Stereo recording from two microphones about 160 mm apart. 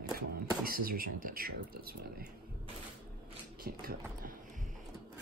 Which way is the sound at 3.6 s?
65° right (ahead or behind).